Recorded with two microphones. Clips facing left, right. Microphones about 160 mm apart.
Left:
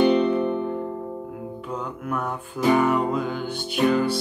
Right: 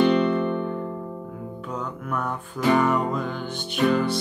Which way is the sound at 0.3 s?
10° left (ahead or behind).